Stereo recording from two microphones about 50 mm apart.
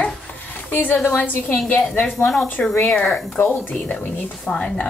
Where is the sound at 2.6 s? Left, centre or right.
Left.